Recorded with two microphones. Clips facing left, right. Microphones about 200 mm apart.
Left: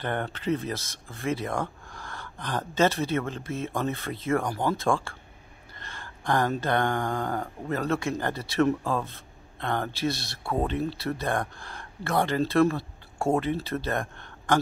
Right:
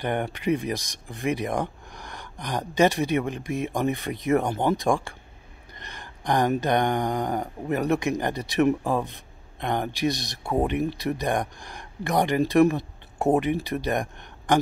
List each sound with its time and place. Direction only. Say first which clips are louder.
0.0 s speech: right 3 dB; 15° right (ahead or behind)